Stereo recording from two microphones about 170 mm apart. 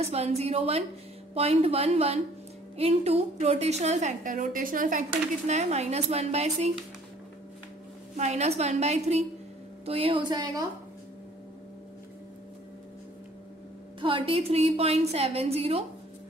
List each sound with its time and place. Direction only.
0.0 s a woman's voice: 40° right (ahead or behind); by 5.0 s 55° right (ahead or behind)
5.5 s a woman's voice: 40° right (ahead or behind)
8.2 s a woman's voice: 40° right (ahead or behind)
14.0 s a woman's voice: 30° right (ahead or behind)